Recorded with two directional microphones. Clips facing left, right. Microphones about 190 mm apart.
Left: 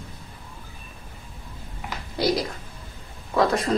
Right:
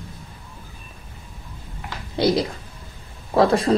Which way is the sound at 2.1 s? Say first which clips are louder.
Right 4 dB; 25° right (ahead or behind).